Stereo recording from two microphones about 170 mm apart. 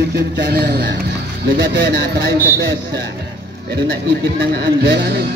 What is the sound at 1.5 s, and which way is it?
A man's voice, 80° right.